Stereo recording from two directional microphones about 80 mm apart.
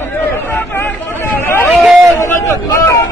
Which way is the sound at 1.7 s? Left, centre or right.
Centre.